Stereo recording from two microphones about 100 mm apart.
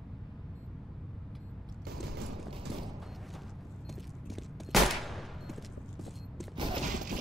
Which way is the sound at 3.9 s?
Centre (ahead or behind).